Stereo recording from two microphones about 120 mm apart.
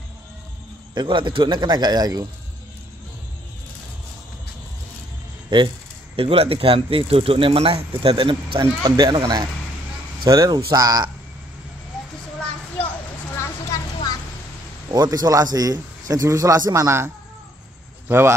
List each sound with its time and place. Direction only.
0.9 s speech: 45° right (ahead or behind)
5.5 s speech: 40° right (ahead or behind)
6.1 s speech: 55° right (ahead or behind); by 11.1 s 35° right (ahead or behind)
12.4 s a sound: 10° left (ahead or behind)
14.9 s a man's voice: 35° right (ahead or behind)